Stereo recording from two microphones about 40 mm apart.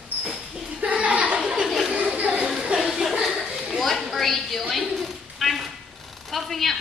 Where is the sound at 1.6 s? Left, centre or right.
Centre.